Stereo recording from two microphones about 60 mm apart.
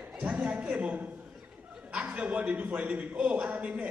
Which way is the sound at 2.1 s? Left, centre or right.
Right.